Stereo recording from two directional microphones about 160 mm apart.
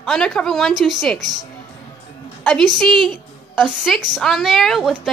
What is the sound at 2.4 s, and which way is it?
A woman's voice, 5° left (ahead or behind).